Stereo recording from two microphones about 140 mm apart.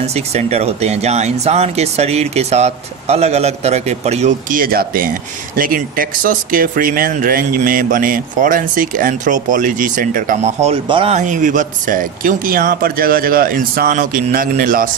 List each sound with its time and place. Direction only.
0.0 s speech: 50° right (ahead or behind)
4.5 s speech: 90° right; by 10.5 s 70° right (ahead or behind)
10.6 s speech: 45° right (ahead or behind)
11.1 s speech: 65° right (ahead or behind); by 14.9 s 85° right